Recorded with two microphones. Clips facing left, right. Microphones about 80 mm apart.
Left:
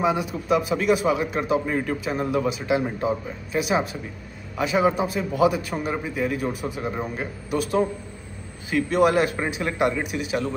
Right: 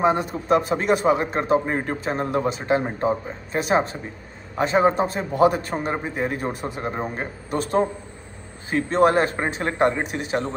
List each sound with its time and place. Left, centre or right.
0.0 s a man's voice: right